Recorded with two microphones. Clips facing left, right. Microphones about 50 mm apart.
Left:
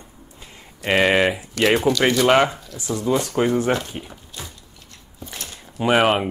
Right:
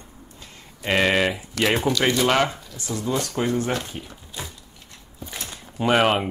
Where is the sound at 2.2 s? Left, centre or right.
Centre.